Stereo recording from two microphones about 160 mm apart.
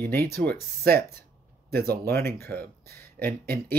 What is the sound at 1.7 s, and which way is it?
Speech, 75° right (ahead or behind).